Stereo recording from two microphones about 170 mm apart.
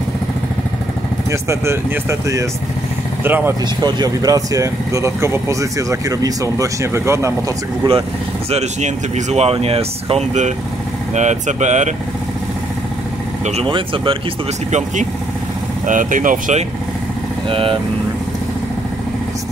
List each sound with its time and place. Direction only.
1.3 s speech: 15° right (ahead or behind)
3.8 s speech: 25° right (ahead or behind)
8.5 s speech: 40° right (ahead or behind)
13.5 s speech: 35° right (ahead or behind)
14.7 s speech: 45° right (ahead or behind)
17.5 s speech: 30° right (ahead or behind)